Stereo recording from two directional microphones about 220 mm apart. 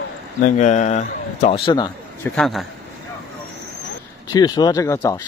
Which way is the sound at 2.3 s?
Centre (ahead or behind).